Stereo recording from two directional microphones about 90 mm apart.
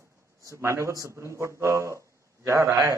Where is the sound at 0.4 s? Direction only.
35° right (ahead or behind).